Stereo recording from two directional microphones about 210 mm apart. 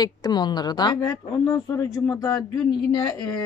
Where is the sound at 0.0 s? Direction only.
20° left (ahead or behind).